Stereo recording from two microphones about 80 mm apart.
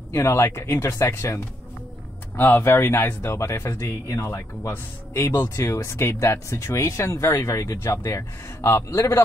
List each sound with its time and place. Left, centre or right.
0.1 s speech: left
2.3 s speech: left